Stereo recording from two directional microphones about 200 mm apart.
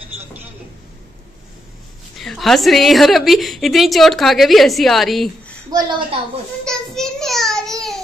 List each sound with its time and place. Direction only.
2.1 s a woman's voice: centre (ahead or behind)
5.7 s a woman's voice: 20° right (ahead or behind)
6.6 s child singing: centre (ahead or behind)